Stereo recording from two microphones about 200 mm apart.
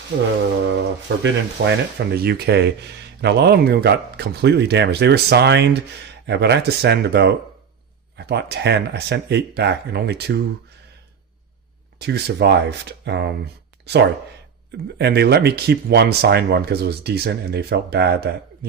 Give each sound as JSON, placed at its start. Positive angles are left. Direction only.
{"t": 0.7, "sound": "speech", "side_deg": -60}
{"t": 12.0, "sound": "speech", "side_deg": -55}
{"t": 15.0, "sound": "speech", "side_deg": -55}